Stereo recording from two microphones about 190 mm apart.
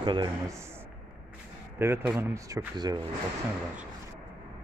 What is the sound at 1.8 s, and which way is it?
Speech, 10° right (ahead or behind).